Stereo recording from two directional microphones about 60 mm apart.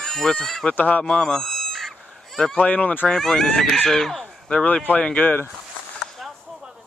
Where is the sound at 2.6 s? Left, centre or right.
Left.